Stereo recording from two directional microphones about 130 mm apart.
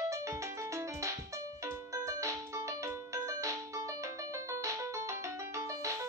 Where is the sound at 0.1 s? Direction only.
25° right (ahead or behind).